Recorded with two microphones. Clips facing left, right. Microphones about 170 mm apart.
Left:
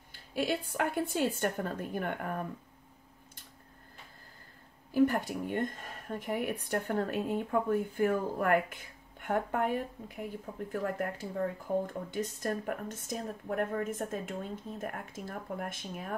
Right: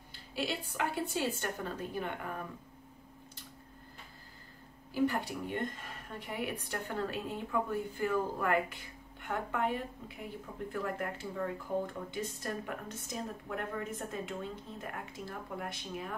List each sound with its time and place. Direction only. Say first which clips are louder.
0.1 s speech: left 5 dB; 50° left (ahead or behind)
4.9 s speech: left 5 dB; 50° left (ahead or behind)